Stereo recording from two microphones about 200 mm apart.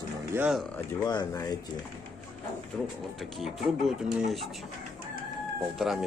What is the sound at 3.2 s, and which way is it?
Speech, centre (ahead or behind).